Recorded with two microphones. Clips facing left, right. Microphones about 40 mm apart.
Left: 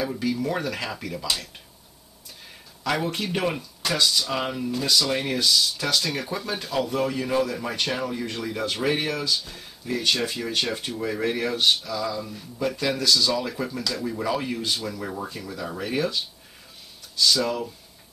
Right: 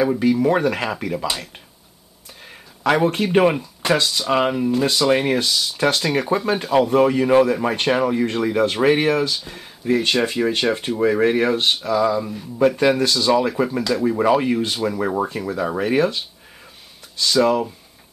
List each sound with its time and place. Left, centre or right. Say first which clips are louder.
0.1 s speech: right 9 dB; right
2.8 s speech: right 8 dB; right
14.0 s speech: right 11 dB; right
15.0 s speech: right 10 dB; right
17.3 s speech: right 10 dB; right